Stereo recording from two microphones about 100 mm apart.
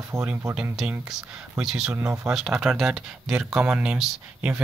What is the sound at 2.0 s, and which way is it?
Speech, 35° right (ahead or behind).